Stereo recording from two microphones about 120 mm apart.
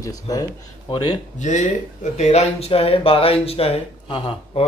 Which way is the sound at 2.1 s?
65° left (ahead or behind).